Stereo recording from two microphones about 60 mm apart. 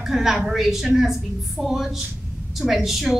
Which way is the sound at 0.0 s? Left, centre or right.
Centre.